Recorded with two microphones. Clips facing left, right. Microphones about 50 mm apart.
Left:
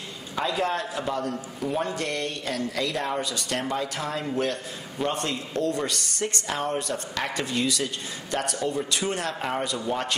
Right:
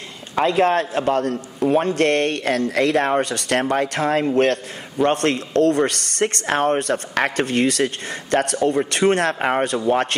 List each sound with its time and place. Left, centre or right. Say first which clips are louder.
0.4 s a man's voice: right 9 dB; right